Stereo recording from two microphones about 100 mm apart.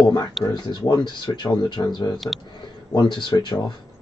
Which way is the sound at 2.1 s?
Centre (ahead or behind).